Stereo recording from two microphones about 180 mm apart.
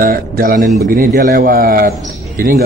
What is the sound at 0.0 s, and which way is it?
A man's voice, 50° right (ahead or behind).